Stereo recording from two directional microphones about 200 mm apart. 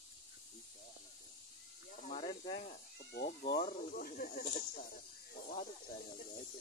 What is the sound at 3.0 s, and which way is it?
Cat, 55° left (ahead or behind).